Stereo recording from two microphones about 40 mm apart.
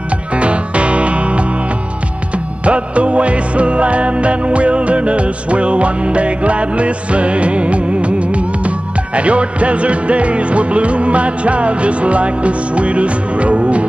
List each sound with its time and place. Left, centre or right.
0.3 s music: right